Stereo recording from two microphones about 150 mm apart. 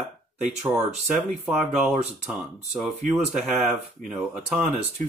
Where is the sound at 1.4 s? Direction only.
10° right (ahead or behind).